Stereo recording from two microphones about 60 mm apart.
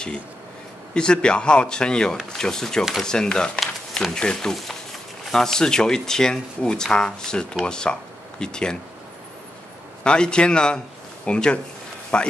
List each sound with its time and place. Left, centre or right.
0.9 s speech: centre
10.0 s speech: centre